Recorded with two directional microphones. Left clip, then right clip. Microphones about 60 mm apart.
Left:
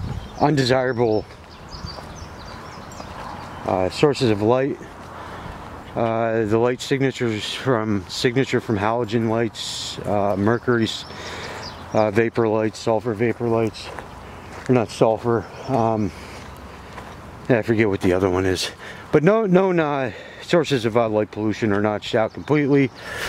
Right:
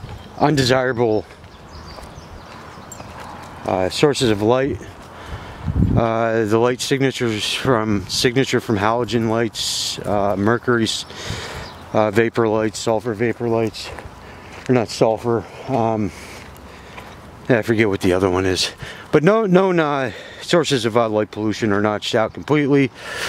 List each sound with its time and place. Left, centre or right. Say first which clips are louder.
0.4 s speech: right 2 dB; right
3.2 s speech: left 1 dB; right
5.9 s speech: right 2 dB; right
17.5 s speech: right 2 dB; right